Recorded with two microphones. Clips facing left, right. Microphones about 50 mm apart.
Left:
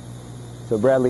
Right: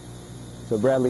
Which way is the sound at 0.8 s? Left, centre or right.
Left.